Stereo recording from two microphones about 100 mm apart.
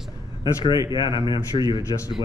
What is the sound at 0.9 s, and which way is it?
Speech, 50° left (ahead or behind).